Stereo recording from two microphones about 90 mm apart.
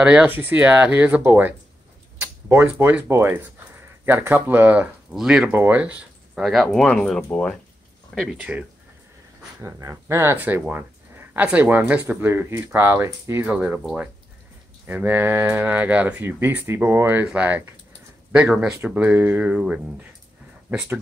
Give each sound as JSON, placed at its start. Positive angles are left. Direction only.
{"t": 0.0, "sound": "speech", "side_deg": -15}
{"t": 2.5, "sound": "speech", "side_deg": -25}
{"t": 5.1, "sound": "speech", "side_deg": -10}
{"t": 5.5, "sound": "speech", "side_deg": -25}
{"t": 6.4, "sound": "speech", "side_deg": 0}
{"t": 8.1, "sound": "speech", "side_deg": 0}
{"t": 8.4, "sound": "speech", "side_deg": -15}
{"t": 9.6, "sound": "speech", "side_deg": -35}
{"t": 10.7, "sound": "a sound", "side_deg": -20}
{"t": 11.4, "sound": "speech", "side_deg": -20}
{"t": 14.9, "sound": "speech", "side_deg": -20}